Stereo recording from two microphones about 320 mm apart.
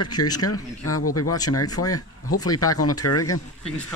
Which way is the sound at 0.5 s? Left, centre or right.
Left.